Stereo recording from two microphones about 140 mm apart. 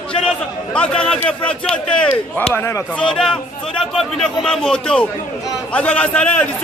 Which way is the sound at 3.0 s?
5° left (ahead or behind).